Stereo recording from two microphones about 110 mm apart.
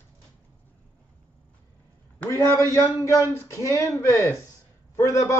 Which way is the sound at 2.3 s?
25° left (ahead or behind).